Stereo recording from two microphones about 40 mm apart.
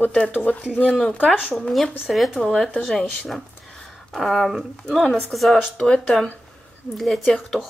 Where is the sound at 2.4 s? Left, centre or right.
Centre.